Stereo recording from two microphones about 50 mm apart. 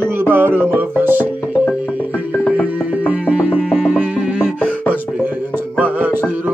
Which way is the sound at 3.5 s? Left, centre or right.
Right.